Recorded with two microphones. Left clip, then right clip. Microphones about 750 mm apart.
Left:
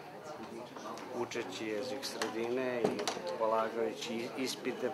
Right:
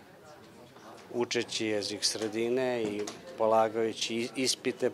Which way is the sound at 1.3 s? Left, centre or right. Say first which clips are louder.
Right 7 dB; right.